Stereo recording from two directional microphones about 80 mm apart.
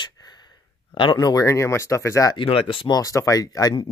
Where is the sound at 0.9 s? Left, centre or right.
Left.